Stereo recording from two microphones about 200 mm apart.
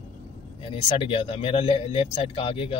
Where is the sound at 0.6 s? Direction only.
25° left (ahead or behind).